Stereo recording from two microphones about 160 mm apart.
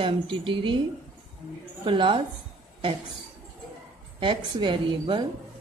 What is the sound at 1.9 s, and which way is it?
Speech, 30° right (ahead or behind).